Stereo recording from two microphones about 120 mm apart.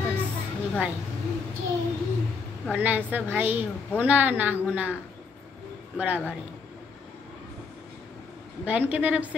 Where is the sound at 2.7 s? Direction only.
15° right (ahead or behind).